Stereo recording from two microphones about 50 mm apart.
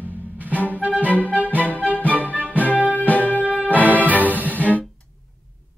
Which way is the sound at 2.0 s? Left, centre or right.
Left.